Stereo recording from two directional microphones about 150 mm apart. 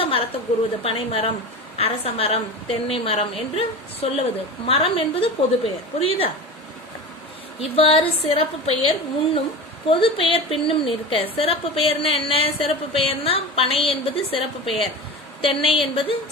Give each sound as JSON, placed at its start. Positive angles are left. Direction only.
{"t": 0.0, "sound": "a sound", "side_deg": 40}
{"t": 0.8, "sound": "speech", "side_deg": 40}
{"t": 7.6, "sound": "speech", "side_deg": 40}